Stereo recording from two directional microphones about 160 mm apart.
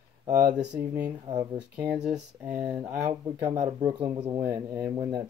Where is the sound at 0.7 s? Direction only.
10° right (ahead or behind).